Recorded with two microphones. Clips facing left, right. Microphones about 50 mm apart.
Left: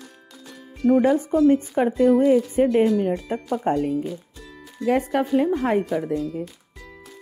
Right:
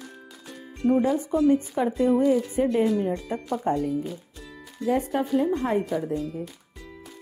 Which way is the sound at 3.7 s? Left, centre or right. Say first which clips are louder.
Left 3 dB; left.